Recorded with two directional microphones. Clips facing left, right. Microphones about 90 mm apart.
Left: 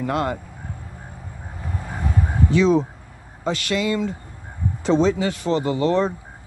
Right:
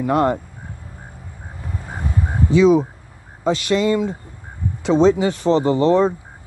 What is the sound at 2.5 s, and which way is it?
Speech, 10° right (ahead or behind).